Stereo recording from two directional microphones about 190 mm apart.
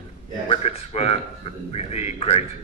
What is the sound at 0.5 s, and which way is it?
A man's voice, 35° left (ahead or behind).